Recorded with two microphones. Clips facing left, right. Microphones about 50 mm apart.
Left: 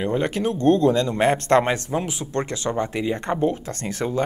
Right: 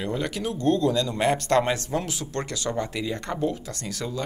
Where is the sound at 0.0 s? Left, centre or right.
Left.